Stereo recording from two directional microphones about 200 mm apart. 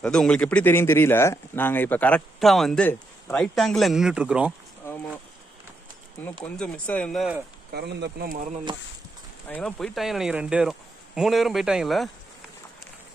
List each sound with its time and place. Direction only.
0.0 s speech: 5° left (ahead or behind)
6.5 s speech: 5° left (ahead or behind)
7.7 s speech: 55° right (ahead or behind)
9.5 s speech: 5° left (ahead or behind)